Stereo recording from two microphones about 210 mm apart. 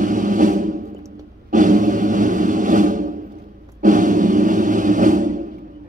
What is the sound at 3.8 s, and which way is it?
Music, 40° right (ahead or behind).